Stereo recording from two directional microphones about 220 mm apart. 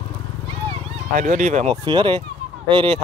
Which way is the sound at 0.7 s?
30° right (ahead or behind).